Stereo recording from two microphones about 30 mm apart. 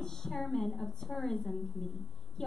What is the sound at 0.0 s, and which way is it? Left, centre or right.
A woman's voice, centre.